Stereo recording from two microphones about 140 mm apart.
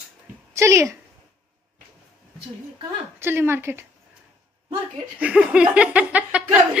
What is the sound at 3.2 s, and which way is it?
Speech, 15° right (ahead or behind).